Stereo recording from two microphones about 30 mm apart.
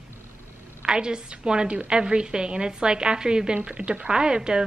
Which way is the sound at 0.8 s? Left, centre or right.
Right.